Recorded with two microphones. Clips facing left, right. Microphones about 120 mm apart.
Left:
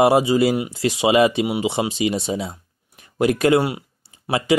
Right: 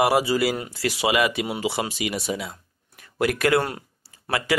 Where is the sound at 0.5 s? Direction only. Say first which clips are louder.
Left 7 dB; 10° left (ahead or behind).